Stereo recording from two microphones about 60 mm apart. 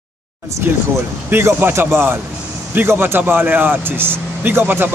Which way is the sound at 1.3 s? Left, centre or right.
Right.